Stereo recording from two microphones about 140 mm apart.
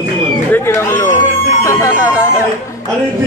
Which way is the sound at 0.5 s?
20° left (ahead or behind).